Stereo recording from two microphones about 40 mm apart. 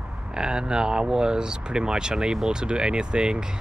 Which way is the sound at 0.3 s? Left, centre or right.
Centre.